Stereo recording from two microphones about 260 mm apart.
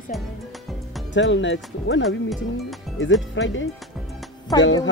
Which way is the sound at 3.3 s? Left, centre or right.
Left.